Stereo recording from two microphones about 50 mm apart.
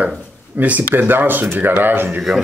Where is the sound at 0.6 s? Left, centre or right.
Right.